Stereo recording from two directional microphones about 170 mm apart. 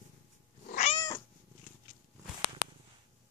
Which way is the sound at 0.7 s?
45° left (ahead or behind).